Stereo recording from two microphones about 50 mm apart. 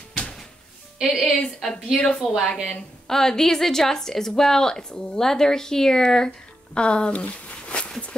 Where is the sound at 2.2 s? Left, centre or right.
Centre.